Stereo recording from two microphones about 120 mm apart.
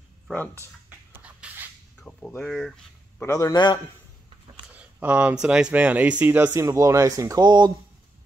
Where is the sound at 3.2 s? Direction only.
30° left (ahead or behind).